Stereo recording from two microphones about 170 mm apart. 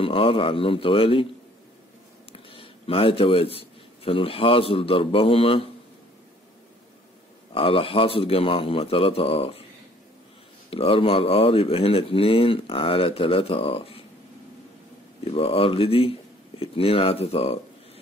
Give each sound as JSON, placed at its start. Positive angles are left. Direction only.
{"t": 0.0, "sound": "speech", "side_deg": 30}
{"t": 2.3, "sound": "a man's voice", "side_deg": 30}
{"t": 7.5, "sound": "speech", "side_deg": 30}
{"t": 10.7, "sound": "speech", "side_deg": 30}
{"t": 15.3, "sound": "speech", "side_deg": 35}